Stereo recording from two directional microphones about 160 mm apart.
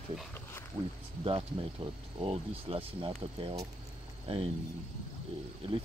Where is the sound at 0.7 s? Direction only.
30° right (ahead or behind).